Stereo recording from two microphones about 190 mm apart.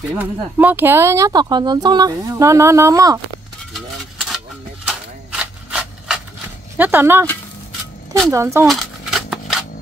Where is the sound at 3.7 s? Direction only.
Centre (ahead or behind).